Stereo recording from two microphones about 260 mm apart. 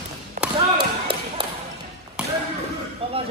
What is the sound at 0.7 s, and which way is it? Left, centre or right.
Basketball bounce, centre.